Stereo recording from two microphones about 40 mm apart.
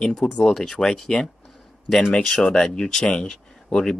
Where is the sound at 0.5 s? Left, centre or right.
Centre.